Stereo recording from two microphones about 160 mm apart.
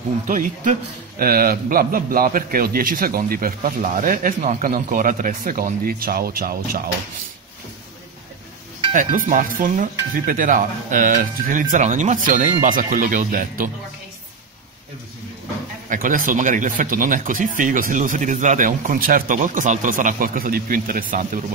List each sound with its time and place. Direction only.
0.3 s speech: 55° right (ahead or behind)
8.9 s speech: 55° right (ahead or behind)
15.9 s speech: 60° right (ahead or behind)